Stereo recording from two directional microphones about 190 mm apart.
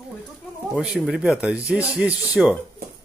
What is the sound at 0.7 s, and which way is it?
Speech, 5° right (ahead or behind).